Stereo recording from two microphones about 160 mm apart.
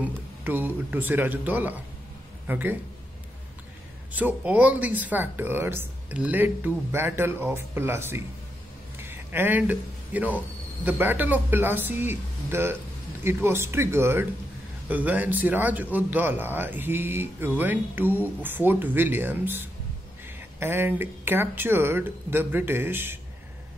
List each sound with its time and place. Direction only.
0.0 s speech: 10° right (ahead or behind)
4.1 s speech: 10° right (ahead or behind)